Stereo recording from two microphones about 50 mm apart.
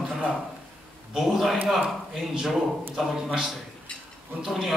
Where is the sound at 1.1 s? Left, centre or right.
Centre.